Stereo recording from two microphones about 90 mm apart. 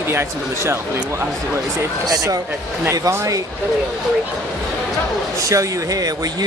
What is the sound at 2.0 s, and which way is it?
Speech, 45° right (ahead or behind).